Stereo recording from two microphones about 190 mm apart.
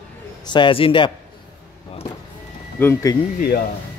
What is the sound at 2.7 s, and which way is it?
Speech, 10° left (ahead or behind).